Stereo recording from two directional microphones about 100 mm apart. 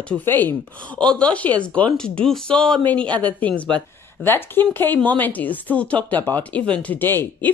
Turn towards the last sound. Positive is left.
turn(degrees=20)  # may be behind; listen again after turning